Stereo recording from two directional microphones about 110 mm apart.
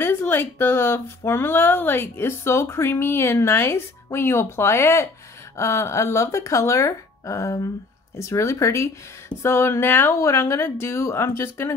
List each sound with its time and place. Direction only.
0.0 s speech: 20° left (ahead or behind)